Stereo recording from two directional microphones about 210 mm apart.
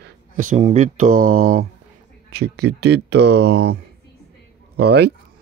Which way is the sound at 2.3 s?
50° right (ahead or behind).